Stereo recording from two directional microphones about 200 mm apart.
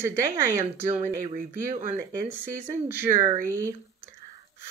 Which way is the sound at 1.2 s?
40° right (ahead or behind).